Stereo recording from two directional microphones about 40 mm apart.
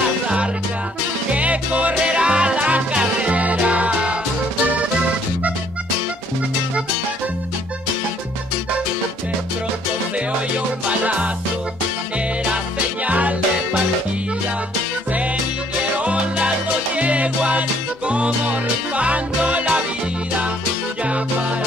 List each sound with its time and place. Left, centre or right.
1.3 s music: right
2.0 s music: right
10.9 s music: right
13.0 s music: right
16.0 s music: right